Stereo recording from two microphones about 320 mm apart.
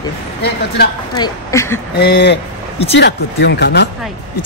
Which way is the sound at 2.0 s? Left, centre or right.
Left.